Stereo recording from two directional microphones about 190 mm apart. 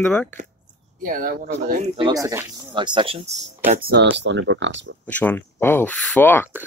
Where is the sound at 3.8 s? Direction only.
65° right (ahead or behind).